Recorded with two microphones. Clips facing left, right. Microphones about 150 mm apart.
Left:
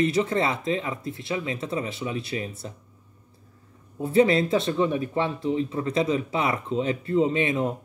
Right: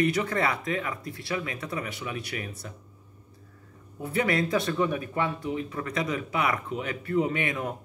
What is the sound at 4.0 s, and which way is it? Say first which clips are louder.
Speech: left 7 dB; 25° left (ahead or behind).